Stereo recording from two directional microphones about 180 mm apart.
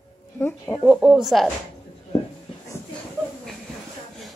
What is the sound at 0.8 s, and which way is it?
Speech, 5° right (ahead or behind).